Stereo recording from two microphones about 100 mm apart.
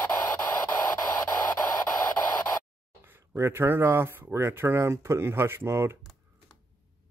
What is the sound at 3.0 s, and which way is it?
Speech, 25° right (ahead or behind).